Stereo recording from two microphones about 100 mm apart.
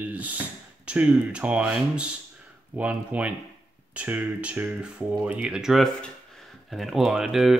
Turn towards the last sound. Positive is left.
turn(degrees=-5)  # may be behind; listen again after turning